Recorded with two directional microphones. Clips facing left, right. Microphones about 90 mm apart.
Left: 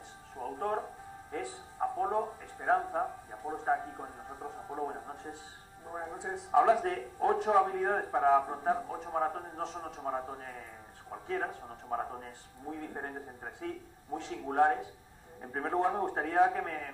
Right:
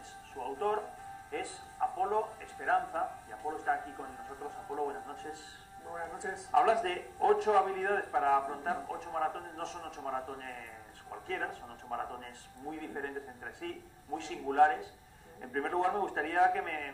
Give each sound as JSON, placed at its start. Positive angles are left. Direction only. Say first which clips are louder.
{"t": 0.4, "sound": "speech", "louder": "right 1 dB", "side_deg": 25}
{"t": 1.8, "sound": "speech", "louder": "even", "side_deg": 20}
{"t": 6.5, "sound": "speech", "louder": "left 2 dB", "side_deg": 30}